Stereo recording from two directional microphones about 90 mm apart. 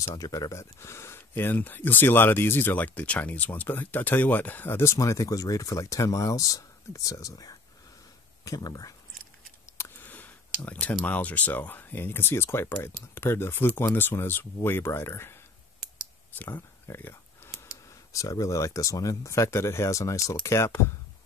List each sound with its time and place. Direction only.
0.1 s speech: 45° left (ahead or behind); by 4.9 s 25° left (ahead or behind)
4.9 s speech: 35° left (ahead or behind)
9.8 s clicking: 25° left (ahead or behind)
11.1 s speech: 15° left (ahead or behind)
16.3 s speech: 25° left (ahead or behind)